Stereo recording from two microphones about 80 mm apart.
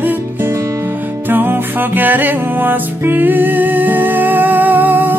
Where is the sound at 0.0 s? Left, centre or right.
Right.